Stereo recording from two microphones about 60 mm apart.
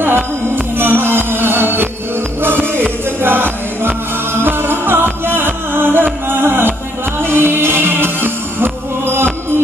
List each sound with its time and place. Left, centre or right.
0.7 s music: right